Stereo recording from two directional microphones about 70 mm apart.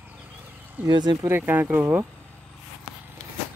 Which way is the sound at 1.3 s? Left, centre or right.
Right.